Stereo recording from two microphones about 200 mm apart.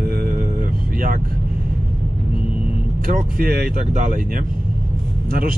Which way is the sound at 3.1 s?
45° right (ahead or behind).